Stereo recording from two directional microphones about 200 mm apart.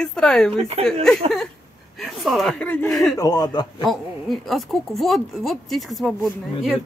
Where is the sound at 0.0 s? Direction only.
5° left (ahead or behind).